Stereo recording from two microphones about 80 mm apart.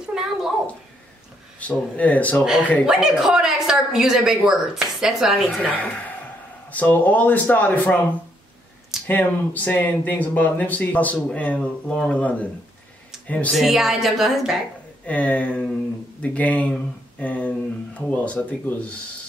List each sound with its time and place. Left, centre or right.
0.0 s a sound: centre
1.6 s speech: centre
2.9 s a woman's voice: centre
5.6 s speech: left
9.0 s speech: centre
13.5 s a woman's voice: centre
15.0 s speech: centre